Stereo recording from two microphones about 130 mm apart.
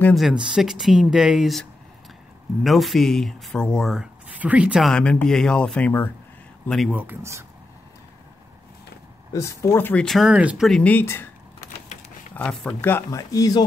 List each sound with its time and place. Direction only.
0.1 s speech: 5° right (ahead or behind); by 6.1 s 15° left (ahead or behind)
6.9 s speech: 15° right (ahead or behind)
9.3 s speech: 25° left (ahead or behind)
10.0 s speech: centre (ahead or behind)
10.7 s speech: 10° left (ahead or behind)
12.4 s speech: 10° left (ahead or behind); by 13.7 s 30° left (ahead or behind)